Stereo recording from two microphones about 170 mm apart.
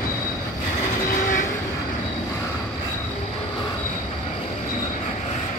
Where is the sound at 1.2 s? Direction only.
50° left (ahead or behind).